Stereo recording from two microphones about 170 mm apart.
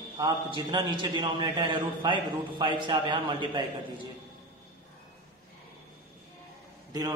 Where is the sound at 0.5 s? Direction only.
25° right (ahead or behind).